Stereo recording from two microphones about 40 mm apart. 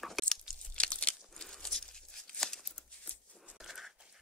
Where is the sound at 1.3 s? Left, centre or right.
Centre.